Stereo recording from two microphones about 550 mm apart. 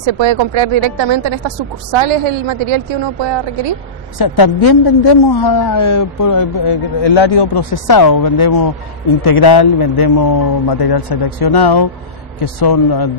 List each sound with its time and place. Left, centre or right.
0.0 s a woman's voice: right
4.2 s a woman's voice: left
7.7 s a woman's voice: left